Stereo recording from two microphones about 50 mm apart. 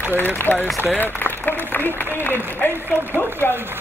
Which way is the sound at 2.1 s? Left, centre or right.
Left.